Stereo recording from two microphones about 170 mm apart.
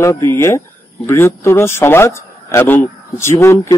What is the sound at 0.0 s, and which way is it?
A man's voice, 15° left (ahead or behind).